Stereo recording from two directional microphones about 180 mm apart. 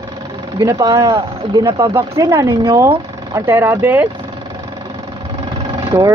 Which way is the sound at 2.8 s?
15° right (ahead or behind).